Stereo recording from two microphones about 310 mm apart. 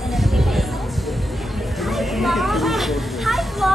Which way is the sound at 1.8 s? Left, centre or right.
Centre.